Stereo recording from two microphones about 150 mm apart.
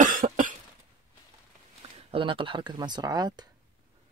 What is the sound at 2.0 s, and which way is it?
Speech, 40° right (ahead or behind).